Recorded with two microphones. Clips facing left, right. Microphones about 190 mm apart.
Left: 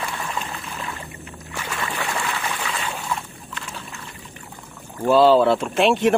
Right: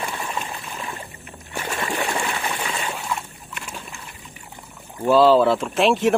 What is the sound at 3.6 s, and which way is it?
Boat, 15° right (ahead or behind).